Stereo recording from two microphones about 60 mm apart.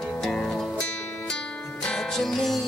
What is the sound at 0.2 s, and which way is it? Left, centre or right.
Music, centre.